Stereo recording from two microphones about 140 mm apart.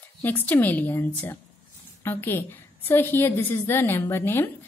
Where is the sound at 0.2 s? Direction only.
15° left (ahead or behind).